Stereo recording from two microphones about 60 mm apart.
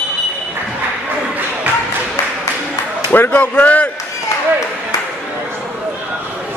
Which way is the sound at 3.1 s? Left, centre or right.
Left.